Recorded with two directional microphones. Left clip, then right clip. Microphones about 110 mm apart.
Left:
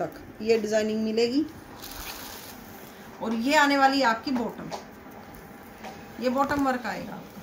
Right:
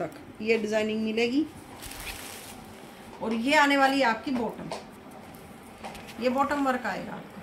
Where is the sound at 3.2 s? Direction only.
Centre (ahead or behind).